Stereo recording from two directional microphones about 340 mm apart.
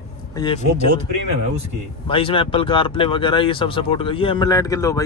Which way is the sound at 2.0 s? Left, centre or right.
Centre.